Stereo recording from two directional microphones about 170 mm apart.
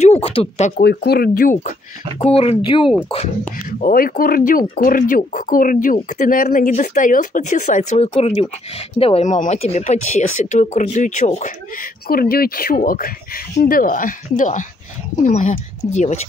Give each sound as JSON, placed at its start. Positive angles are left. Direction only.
{"t": 0.0, "sound": "speech", "side_deg": 40}
{"t": 0.7, "sound": "speech", "side_deg": 70}
{"t": 2.1, "sound": "speech", "side_deg": 35}
{"t": 3.4, "sound": "speech", "side_deg": 55}